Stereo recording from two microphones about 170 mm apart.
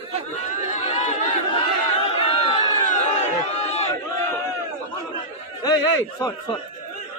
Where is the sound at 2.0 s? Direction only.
35° left (ahead or behind).